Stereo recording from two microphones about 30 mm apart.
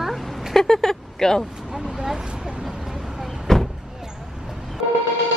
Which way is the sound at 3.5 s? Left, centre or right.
Left.